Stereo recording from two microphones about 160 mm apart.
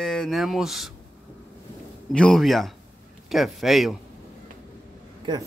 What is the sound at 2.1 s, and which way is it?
Speech, 5° left (ahead or behind).